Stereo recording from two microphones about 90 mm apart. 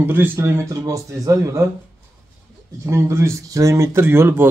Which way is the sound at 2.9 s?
30° right (ahead or behind).